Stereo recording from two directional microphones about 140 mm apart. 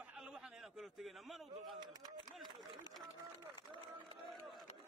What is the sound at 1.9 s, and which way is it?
Speech, 30° right (ahead or behind).